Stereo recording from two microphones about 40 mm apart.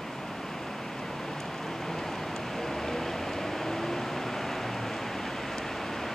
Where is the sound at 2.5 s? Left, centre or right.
Centre.